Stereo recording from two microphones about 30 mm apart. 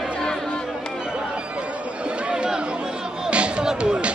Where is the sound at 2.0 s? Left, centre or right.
Right.